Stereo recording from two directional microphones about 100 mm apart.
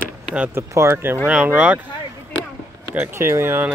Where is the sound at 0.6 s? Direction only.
25° right (ahead or behind).